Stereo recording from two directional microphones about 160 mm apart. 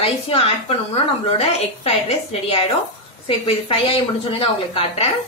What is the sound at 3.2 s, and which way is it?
A woman's voice, 35° left (ahead or behind).